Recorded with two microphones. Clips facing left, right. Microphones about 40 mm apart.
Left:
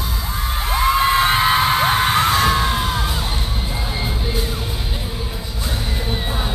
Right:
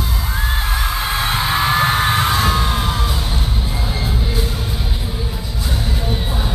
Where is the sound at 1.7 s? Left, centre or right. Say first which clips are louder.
Right 1 dB; centre.